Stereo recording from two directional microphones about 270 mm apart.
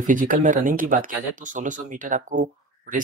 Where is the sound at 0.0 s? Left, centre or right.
Right.